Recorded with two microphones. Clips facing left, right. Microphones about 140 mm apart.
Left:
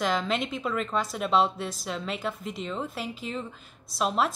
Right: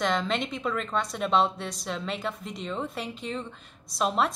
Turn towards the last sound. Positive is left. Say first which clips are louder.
# even
turn(degrees=0)  # may be behind; listen again after turning